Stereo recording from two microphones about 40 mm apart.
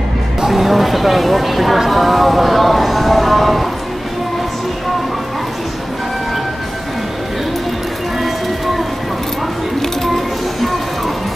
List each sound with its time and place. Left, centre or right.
0.4 s speech: centre
9.8 s music: centre